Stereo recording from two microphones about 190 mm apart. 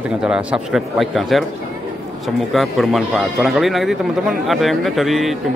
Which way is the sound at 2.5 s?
Centre (ahead or behind).